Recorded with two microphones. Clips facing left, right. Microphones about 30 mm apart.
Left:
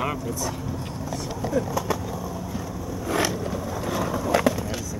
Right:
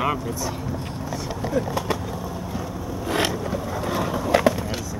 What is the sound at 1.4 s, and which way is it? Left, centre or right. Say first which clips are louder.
Speech: right 1 dB; right.